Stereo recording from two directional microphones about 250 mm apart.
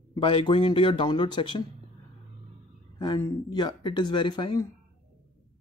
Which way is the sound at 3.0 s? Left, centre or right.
Centre.